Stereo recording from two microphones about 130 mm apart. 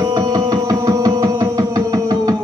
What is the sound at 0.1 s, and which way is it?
Music, 25° right (ahead or behind).